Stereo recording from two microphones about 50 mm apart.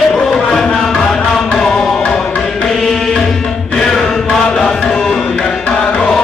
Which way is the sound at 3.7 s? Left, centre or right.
Centre.